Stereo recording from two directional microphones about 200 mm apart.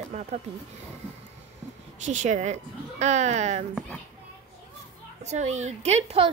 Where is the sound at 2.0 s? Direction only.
35° right (ahead or behind).